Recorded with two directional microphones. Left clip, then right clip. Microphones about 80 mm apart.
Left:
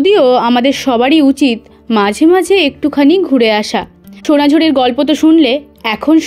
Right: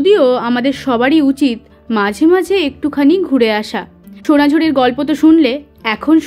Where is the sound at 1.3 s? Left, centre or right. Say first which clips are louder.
Left 3 dB; left.